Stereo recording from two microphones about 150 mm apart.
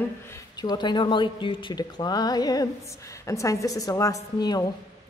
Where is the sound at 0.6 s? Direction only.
30° left (ahead or behind).